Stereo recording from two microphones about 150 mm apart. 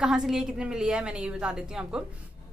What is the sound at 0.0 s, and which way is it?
A woman's voice, 5° right (ahead or behind).